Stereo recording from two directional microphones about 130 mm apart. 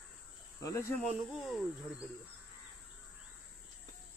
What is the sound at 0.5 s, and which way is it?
Speech, 25° left (ahead or behind).